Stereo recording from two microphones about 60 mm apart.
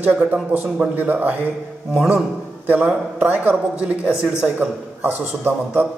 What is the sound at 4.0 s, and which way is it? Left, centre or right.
Speech, centre.